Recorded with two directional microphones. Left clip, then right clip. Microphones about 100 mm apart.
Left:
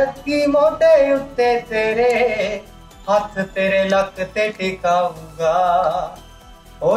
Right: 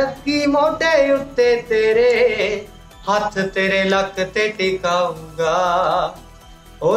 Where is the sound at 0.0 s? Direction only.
35° right (ahead or behind).